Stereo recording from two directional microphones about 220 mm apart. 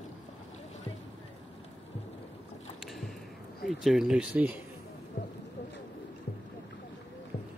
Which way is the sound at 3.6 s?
Centre (ahead or behind).